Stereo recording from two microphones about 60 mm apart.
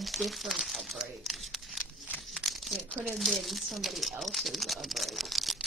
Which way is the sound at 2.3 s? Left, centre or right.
Centre.